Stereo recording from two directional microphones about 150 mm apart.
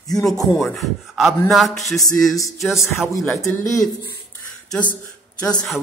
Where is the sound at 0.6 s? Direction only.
Centre (ahead or behind).